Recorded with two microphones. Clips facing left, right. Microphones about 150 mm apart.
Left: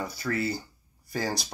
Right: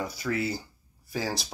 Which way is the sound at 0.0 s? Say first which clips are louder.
Even; 10° right (ahead or behind).